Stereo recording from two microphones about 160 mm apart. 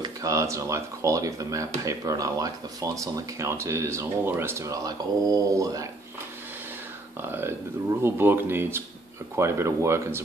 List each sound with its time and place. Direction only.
0.0 s speech: 20° right (ahead or behind)
7.2 s speech: 15° right (ahead or behind)